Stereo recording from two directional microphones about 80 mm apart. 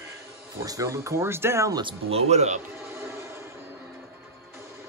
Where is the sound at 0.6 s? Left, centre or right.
Right.